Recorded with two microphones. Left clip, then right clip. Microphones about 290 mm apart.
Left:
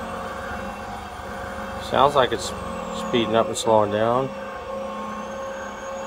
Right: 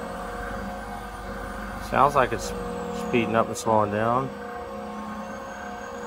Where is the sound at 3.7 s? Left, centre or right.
Right.